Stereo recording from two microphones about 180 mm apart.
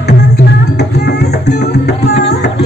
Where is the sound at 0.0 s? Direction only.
65° left (ahead or behind).